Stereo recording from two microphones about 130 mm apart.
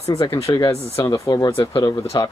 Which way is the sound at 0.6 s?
25° left (ahead or behind).